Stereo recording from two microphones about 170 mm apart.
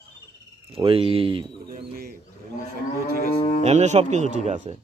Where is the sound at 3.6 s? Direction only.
40° right (ahead or behind).